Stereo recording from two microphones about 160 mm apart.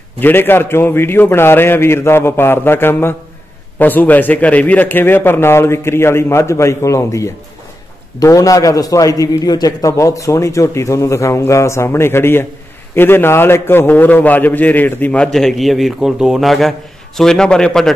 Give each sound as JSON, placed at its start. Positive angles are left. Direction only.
{"t": 0.2, "sound": "a man's voice", "side_deg": 15}